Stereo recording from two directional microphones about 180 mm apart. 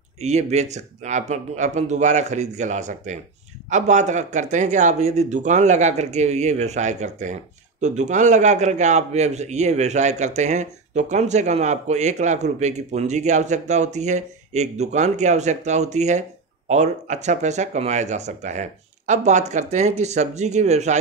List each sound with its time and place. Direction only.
0.2 s a man's voice: 40° right (ahead or behind)